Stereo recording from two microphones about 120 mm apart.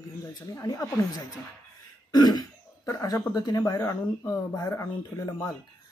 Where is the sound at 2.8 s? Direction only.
30° left (ahead or behind).